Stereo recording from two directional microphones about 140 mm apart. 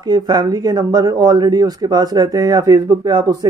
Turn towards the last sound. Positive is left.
turn(degrees=-30)  # may be behind; listen again after turning